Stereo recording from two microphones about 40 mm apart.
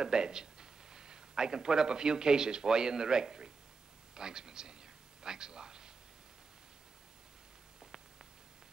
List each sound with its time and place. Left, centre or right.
0.0 s a man's voice: centre